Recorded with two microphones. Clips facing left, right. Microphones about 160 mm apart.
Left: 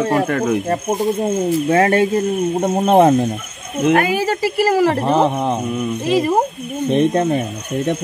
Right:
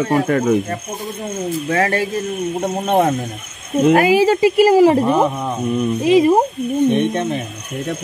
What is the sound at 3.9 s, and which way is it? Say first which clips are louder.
Speech: right 3 dB; 30° right (ahead or behind).